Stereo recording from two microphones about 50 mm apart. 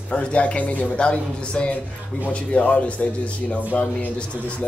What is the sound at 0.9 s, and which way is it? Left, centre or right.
Speech, left.